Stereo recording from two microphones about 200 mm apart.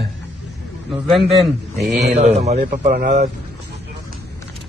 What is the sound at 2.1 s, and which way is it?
Speech, 40° right (ahead or behind).